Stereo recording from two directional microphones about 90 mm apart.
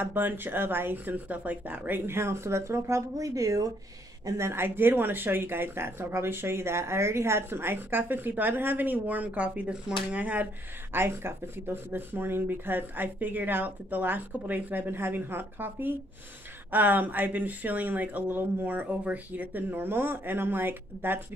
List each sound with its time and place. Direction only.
0.0 s speech: 20° right (ahead or behind); by 3.7 s 40° right (ahead or behind)
4.3 s speech: 30° right (ahead or behind)